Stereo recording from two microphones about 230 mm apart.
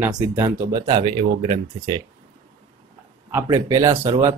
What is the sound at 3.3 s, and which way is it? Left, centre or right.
Speech, centre.